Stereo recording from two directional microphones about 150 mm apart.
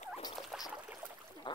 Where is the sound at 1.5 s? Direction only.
30° left (ahead or behind).